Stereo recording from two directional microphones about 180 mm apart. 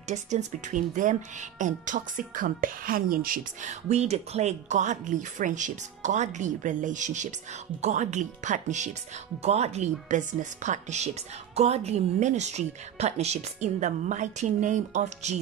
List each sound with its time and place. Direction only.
0.1 s a woman's voice: 40° right (ahead or behind)